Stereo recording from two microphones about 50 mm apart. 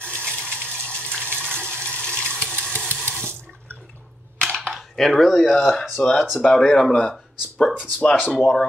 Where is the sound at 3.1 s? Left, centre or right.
Right.